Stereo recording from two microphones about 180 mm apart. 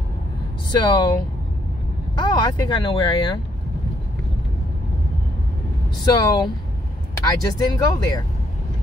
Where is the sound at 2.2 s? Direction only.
25° left (ahead or behind).